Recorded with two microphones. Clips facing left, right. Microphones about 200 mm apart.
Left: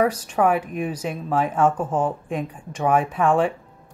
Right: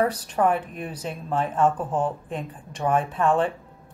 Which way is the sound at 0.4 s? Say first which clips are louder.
Left 3 dB; 10° left (ahead or behind).